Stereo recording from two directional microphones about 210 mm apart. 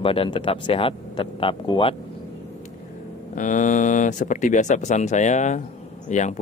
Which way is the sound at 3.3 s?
35° left (ahead or behind).